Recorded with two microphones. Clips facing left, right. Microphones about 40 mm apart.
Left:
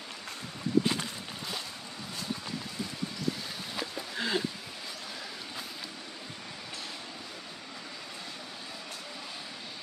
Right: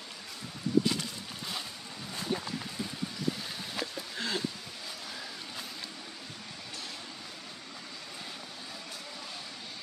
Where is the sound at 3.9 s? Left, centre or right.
Centre.